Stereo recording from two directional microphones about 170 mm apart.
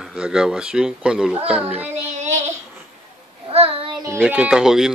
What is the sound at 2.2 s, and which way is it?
Child singing, 45° right (ahead or behind).